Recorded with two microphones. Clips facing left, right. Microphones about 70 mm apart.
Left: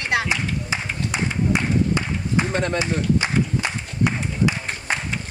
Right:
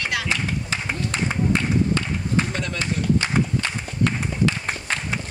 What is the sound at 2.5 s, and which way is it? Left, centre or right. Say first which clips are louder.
Speech: left 5 dB; left.